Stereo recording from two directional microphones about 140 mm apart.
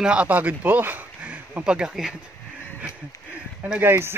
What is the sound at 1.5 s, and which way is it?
Speech, 5° right (ahead or behind).